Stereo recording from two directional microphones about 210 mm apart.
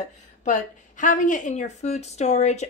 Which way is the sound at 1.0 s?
40° left (ahead or behind).